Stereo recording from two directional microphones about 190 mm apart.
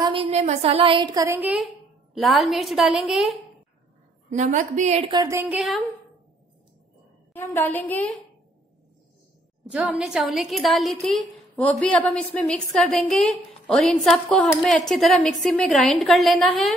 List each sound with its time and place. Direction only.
0.0 s a woman's voice: 30° right (ahead or behind); by 3.3 s centre (ahead or behind)
4.3 s a woman's voice: 40° right (ahead or behind)
5.1 s speech: 20° right (ahead or behind)
5.4 s a woman's voice: 5° right (ahead or behind)
7.3 s a woman's voice: 10° left (ahead or behind)
9.7 s a woman's voice: 5° right (ahead or behind)